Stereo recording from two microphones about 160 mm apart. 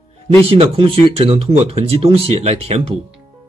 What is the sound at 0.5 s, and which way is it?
Speech, 35° right (ahead or behind).